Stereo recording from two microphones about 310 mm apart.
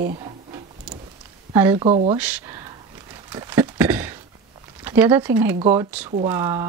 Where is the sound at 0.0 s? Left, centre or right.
Right.